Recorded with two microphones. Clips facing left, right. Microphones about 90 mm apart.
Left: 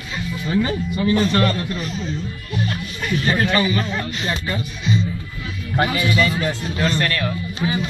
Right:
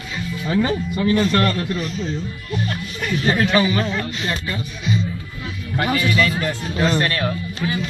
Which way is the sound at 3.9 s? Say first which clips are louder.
Even; 15° left (ahead or behind).